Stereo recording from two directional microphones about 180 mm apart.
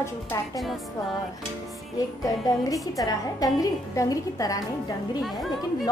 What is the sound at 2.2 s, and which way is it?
A woman's voice, 20° left (ahead or behind).